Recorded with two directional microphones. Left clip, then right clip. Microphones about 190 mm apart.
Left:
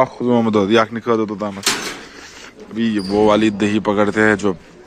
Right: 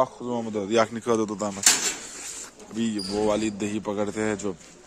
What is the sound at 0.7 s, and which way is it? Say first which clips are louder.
Speech: left 2 dB; 5° right (ahead or behind).